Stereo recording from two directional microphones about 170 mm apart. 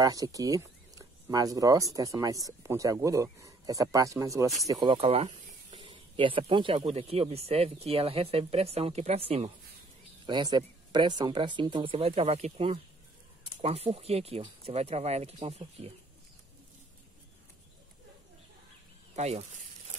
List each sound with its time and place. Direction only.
0.0 s speech: 20° right (ahead or behind)
4.9 s speech: 35° right (ahead or behind)
10.2 s speech: 25° right (ahead or behind)
19.1 s speech: 40° right (ahead or behind)